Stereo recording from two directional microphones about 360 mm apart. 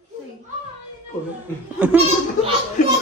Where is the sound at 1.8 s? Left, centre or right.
Centre.